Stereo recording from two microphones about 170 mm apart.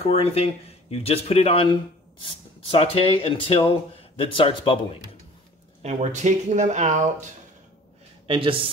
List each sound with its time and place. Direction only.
0.0 s speech: 35° left (ahead or behind)
5.8 s speech: 45° right (ahead or behind)
8.3 s speech: 30° right (ahead or behind)